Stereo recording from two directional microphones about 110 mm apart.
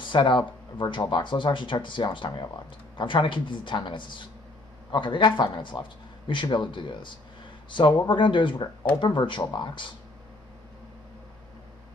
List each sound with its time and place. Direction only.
0.0 s speech: 45° left (ahead or behind)